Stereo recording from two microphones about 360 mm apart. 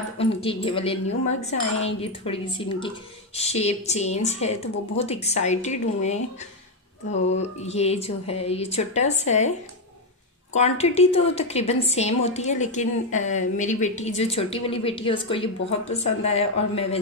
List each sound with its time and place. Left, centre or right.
0.2 s a woman's voice: centre
7.6 s a woman's voice: centre
10.5 s a woman's voice: centre